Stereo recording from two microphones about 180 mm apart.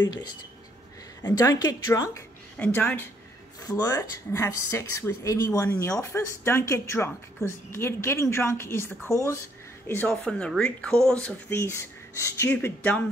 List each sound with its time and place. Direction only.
1.2 s speech: 20° left (ahead or behind)